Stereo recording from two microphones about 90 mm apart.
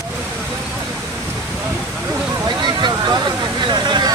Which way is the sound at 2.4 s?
55° right (ahead or behind).